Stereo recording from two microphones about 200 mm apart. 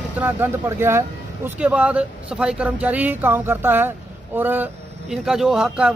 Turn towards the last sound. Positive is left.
turn(degrees=-5)  # may be behind; listen again after turning